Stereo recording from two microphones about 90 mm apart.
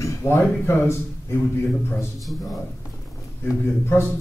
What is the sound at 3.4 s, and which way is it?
Speech, 25° left (ahead or behind).